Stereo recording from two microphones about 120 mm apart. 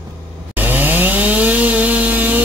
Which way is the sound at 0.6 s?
15° right (ahead or behind).